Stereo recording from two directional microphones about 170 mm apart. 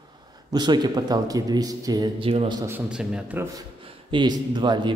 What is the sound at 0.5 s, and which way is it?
Speech, 25° right (ahead or behind).